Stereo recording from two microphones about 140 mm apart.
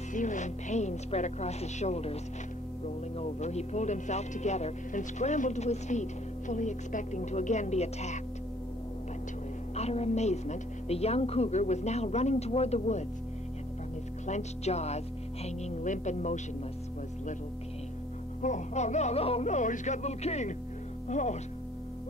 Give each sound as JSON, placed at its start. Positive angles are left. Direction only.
{"t": 0.1, "sound": "speech", "side_deg": 65}
{"t": 3.2, "sound": "speech", "side_deg": 55}
{"t": 9.8, "sound": "speech", "side_deg": 50}
{"t": 14.2, "sound": "speech", "side_deg": 55}
{"t": 18.4, "sound": "speech", "side_deg": 60}